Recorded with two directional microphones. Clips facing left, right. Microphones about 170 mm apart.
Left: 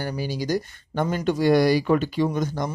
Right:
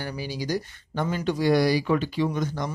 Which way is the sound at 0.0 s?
45° left (ahead or behind).